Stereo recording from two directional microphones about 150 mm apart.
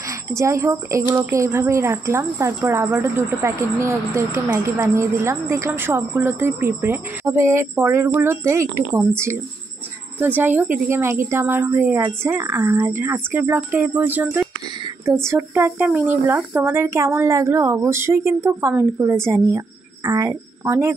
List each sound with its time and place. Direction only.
0.3 s a woman's voice: 20° right (ahead or behind)